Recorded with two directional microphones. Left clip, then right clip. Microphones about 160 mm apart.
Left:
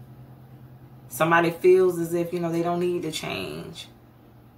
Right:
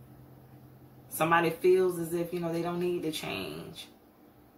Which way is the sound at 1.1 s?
15° left (ahead or behind).